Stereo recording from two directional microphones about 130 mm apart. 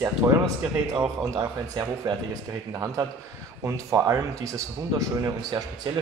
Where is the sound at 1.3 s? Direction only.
25° right (ahead or behind).